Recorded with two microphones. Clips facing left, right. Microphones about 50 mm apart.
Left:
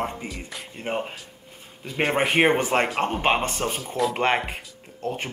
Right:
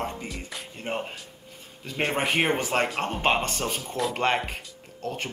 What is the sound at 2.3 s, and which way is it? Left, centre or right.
Speech, left.